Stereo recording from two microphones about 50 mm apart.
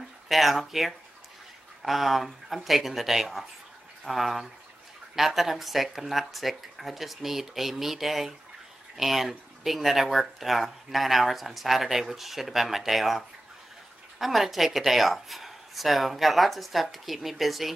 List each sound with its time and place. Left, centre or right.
0.3 s speech: centre